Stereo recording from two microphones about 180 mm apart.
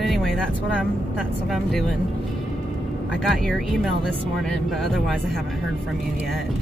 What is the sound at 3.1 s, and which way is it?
Speech, centre (ahead or behind).